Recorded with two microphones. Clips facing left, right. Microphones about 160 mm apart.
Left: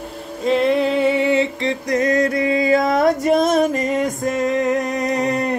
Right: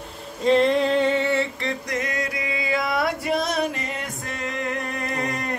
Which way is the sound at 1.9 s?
40° left (ahead or behind).